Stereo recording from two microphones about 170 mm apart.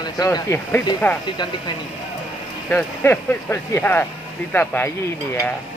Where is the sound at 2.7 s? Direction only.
10° left (ahead or behind).